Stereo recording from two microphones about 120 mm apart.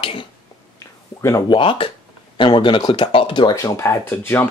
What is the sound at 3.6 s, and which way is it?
Speech, 25° left (ahead or behind).